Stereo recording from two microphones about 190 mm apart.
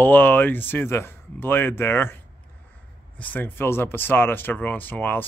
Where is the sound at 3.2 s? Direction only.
10° left (ahead or behind).